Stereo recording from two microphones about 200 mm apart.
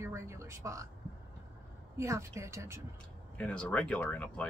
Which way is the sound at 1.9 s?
15° right (ahead or behind).